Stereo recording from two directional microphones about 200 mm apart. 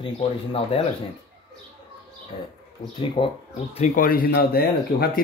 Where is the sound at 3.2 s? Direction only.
25° left (ahead or behind).